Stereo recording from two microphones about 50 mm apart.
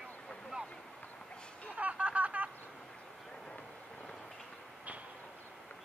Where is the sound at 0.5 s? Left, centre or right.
Centre.